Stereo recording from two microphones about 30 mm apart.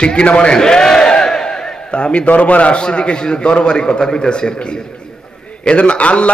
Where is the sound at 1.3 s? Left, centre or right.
Left.